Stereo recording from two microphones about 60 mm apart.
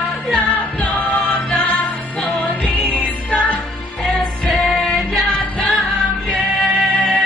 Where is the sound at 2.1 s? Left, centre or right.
Centre.